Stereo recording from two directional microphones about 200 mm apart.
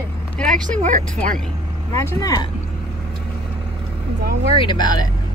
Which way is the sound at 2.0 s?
15° left (ahead or behind).